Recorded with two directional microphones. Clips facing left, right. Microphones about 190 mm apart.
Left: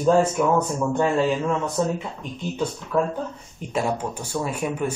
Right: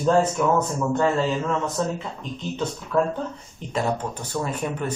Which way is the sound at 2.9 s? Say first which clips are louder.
Right 1 dB; 10° left (ahead or behind).